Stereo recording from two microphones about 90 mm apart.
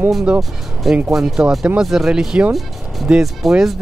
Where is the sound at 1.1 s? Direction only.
5° right (ahead or behind).